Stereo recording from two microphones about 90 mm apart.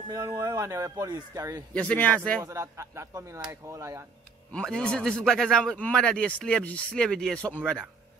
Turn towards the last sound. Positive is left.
turn(degrees=15)  # may be behind; listen again after turning